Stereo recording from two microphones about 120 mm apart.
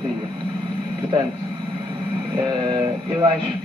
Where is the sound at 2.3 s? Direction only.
35° right (ahead or behind).